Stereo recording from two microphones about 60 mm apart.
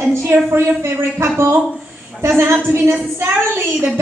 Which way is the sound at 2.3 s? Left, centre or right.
Right.